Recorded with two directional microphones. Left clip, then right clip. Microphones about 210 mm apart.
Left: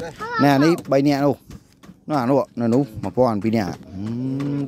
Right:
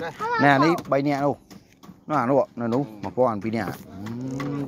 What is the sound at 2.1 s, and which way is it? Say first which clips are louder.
Speech: left 1 dB; 40° left (ahead or behind).